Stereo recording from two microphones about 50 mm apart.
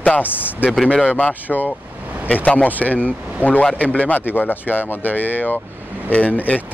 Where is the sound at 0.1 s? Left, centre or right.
Left.